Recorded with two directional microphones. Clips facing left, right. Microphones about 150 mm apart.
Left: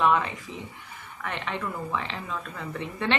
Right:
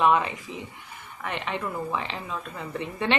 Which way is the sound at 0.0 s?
15° right (ahead or behind).